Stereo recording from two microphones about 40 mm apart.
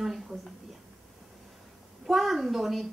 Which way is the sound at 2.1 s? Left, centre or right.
Centre.